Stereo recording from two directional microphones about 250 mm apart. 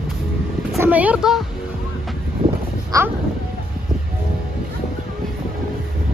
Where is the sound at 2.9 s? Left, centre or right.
Centre.